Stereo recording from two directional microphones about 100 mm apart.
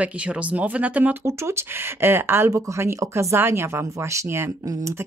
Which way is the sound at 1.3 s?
25° right (ahead or behind).